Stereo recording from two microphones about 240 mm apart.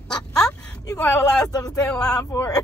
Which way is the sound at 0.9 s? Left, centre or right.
Centre.